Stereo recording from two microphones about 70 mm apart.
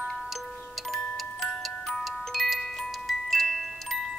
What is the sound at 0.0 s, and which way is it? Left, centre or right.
Music, centre.